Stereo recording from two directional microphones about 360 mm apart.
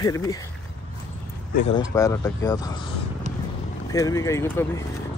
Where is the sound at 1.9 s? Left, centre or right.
Centre.